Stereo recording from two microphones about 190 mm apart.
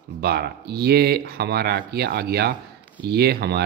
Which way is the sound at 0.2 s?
55° right (ahead or behind).